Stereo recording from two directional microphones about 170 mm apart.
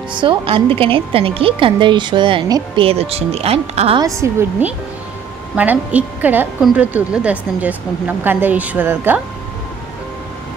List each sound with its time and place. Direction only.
0.1 s a woman's voice: 30° right (ahead or behind)
4.0 s a woman's voice: 20° right (ahead or behind)